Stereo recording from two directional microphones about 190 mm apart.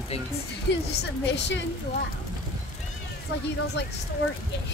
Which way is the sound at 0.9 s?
65° left (ahead or behind).